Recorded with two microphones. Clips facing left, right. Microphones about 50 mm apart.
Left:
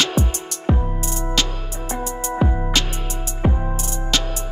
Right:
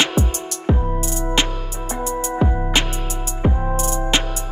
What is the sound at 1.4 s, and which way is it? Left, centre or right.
Music, right.